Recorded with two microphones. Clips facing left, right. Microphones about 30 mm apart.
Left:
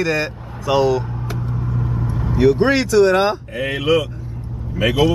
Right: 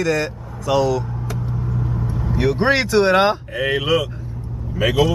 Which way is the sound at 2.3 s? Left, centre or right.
Centre.